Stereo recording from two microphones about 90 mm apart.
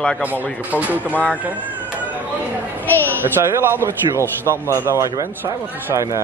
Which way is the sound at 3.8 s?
30° right (ahead or behind).